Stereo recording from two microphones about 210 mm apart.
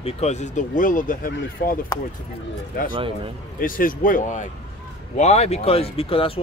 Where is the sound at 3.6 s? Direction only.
40° left (ahead or behind).